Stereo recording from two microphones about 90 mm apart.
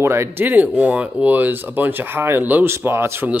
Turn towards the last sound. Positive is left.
turn(degrees=-25)  # may be behind; listen again after turning